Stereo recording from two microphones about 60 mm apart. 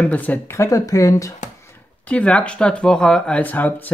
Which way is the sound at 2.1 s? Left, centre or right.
Centre.